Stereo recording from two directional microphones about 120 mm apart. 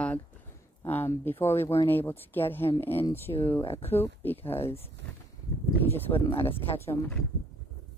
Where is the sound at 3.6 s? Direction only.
55° left (ahead or behind).